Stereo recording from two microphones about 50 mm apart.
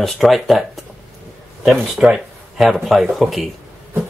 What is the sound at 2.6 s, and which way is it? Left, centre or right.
Speech, centre.